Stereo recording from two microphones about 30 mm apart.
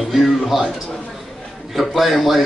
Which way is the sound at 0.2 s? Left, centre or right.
Right.